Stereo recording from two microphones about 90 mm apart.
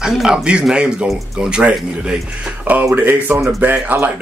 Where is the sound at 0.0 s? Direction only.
5° right (ahead or behind).